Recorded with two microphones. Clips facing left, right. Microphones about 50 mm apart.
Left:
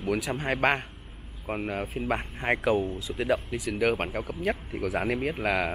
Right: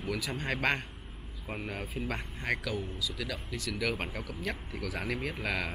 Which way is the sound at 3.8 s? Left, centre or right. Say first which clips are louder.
Left 8 dB; left.